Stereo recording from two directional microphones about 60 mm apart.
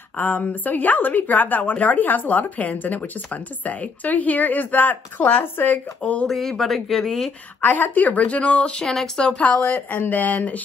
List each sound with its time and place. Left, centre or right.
0.2 s a woman's voice: left
6.2 s speech: centre
7.6 s a woman's voice: left; by 9.4 s centre
9.4 s a woman's voice: left